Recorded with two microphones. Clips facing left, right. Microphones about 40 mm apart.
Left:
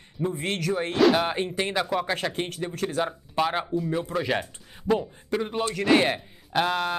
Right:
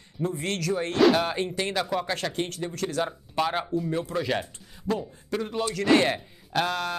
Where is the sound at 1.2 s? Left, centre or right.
Centre.